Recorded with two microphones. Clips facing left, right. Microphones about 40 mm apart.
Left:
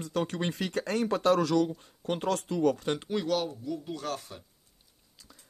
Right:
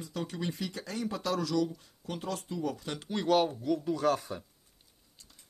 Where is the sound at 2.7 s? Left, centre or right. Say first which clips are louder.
Left 8 dB; left.